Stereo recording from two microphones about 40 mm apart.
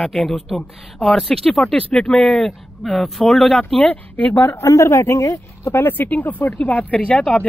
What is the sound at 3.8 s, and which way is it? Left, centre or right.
Speech, left.